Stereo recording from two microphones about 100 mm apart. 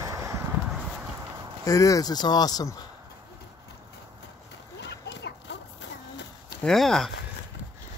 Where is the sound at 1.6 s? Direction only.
35° left (ahead or behind).